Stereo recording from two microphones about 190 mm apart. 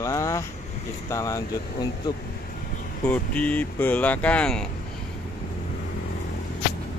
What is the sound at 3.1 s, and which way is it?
Speech, 10° left (ahead or behind).